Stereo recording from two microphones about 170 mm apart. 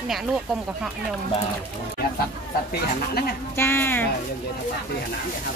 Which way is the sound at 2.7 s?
65° left (ahead or behind).